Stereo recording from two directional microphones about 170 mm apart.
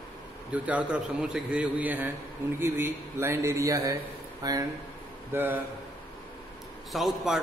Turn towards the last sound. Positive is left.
turn(degrees=0)  # may be behind; listen again after turning